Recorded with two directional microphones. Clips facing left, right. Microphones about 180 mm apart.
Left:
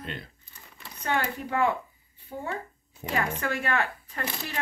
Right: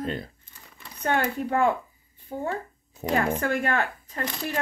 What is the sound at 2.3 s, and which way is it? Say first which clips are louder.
Speech: right 5 dB; 20° right (ahead or behind).